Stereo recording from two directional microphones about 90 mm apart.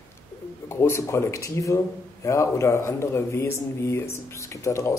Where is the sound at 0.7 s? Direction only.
30° left (ahead or behind).